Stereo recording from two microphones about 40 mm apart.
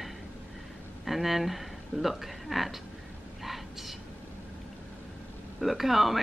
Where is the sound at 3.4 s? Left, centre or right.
Centre.